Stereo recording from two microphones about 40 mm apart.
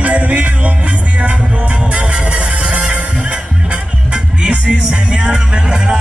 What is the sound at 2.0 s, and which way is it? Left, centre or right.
Music, right.